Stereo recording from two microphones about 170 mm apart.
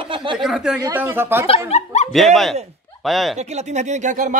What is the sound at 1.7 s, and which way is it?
Speech, 40° left (ahead or behind).